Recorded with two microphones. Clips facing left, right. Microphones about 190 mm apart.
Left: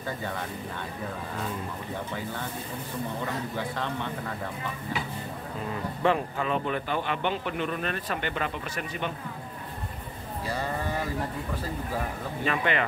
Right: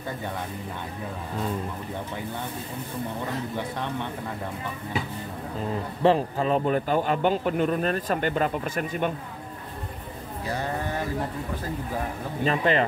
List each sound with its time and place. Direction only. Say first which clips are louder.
3.5 s a man's voice: right 1 dB; 15° right (ahead or behind)
6.0 s a man's voice: right 5 dB; 35° right (ahead or behind); by 9.1 s 50° right (ahead or behind)
12.4 s a man's voice: right 5 dB; 35° right (ahead or behind)